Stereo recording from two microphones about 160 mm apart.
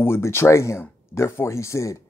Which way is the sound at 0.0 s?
15° left (ahead or behind).